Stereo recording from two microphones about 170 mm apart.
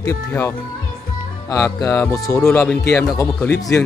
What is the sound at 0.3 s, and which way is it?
Speech, 15° left (ahead or behind).